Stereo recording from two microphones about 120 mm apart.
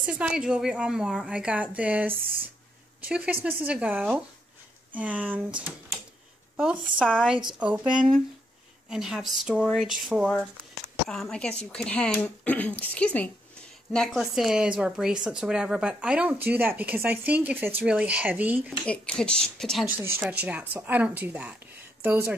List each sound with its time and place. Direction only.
0.0 s speech: 10° right (ahead or behind); by 13.3 s 10° left (ahead or behind)
13.9 s speech: centre (ahead or behind)
18.9 s speech: 10° left (ahead or behind)
20.0 s speech: 15° right (ahead or behind)